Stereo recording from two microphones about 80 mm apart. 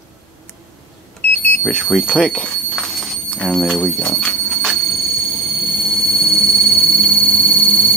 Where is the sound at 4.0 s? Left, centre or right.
Centre.